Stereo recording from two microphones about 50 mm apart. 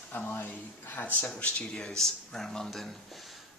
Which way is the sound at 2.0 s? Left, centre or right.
Centre.